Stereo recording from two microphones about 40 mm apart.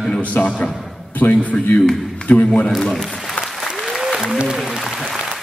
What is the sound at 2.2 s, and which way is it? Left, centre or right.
Speech, left.